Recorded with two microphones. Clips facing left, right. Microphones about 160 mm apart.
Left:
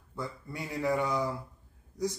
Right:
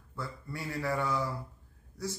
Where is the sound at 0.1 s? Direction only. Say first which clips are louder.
Left 2 dB; 20° left (ahead or behind).